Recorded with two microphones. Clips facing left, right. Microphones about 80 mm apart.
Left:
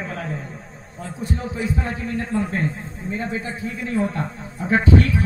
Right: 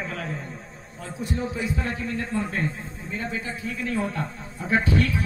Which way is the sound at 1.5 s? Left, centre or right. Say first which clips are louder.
Left 3 dB; left.